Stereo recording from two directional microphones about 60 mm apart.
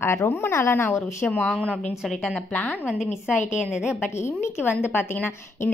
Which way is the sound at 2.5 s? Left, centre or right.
Left.